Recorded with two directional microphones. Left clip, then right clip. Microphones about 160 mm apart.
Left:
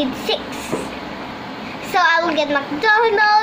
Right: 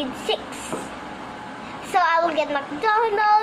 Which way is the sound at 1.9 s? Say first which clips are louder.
Left 4 dB; centre (ahead or behind).